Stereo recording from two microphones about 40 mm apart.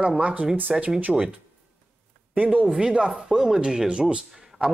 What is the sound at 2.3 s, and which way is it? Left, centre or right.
Speech, right.